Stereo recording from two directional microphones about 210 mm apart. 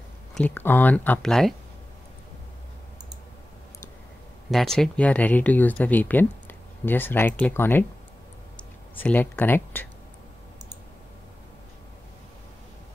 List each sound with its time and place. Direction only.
0.3 s speech: 10° left (ahead or behind)
4.5 s speech: centre (ahead or behind)